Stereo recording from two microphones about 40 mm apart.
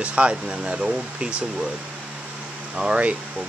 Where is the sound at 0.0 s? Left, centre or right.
Right.